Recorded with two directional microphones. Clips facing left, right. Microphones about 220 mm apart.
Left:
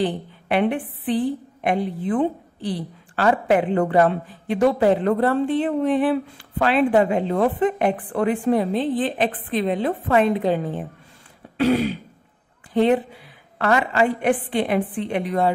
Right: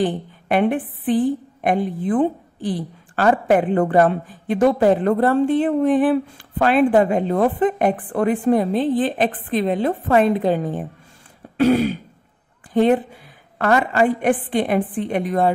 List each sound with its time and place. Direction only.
0.0 s a woman's voice: 45° right (ahead or behind)